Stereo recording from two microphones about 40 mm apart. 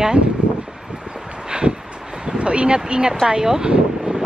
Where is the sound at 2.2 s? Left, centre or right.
Right.